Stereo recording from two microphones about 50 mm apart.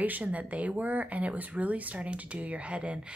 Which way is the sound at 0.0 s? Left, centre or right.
Right.